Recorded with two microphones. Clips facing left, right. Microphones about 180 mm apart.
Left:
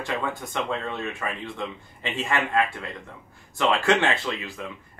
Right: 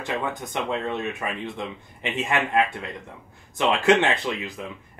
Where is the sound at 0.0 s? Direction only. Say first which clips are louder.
Right 1 dB; 20° right (ahead or behind).